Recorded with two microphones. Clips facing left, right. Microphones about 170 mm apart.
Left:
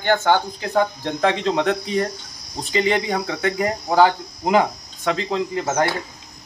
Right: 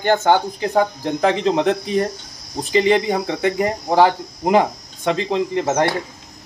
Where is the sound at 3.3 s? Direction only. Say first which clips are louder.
Right 3 dB; 25° right (ahead or behind).